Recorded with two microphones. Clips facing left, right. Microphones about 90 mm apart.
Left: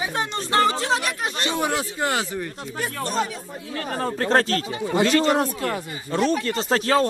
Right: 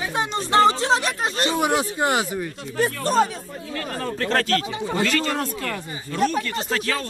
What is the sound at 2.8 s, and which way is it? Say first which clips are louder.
Speech: right 6 dB; 40° right (ahead or behind).